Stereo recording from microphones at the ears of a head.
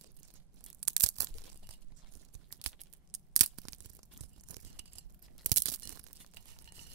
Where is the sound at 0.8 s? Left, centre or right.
Right.